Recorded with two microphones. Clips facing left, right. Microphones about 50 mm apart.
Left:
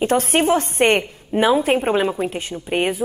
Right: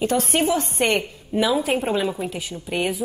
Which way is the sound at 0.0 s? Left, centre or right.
Left.